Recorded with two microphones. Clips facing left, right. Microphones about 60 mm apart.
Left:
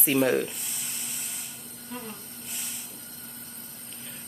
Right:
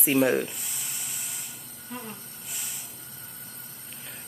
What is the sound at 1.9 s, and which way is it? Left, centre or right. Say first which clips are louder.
Hiss: even; centre.